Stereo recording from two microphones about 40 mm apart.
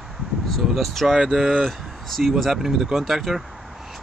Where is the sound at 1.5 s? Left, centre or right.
Centre.